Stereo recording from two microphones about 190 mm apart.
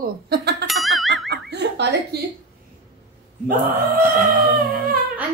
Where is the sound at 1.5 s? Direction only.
60° right (ahead or behind).